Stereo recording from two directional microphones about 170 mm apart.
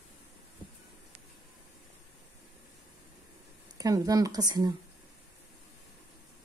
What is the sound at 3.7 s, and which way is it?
Speech, 20° right (ahead or behind).